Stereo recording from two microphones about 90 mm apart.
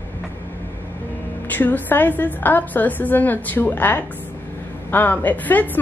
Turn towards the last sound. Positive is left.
turn(degrees=20)  # may be behind; listen again after turning